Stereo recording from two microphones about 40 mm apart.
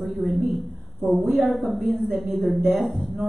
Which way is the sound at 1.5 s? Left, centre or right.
Centre.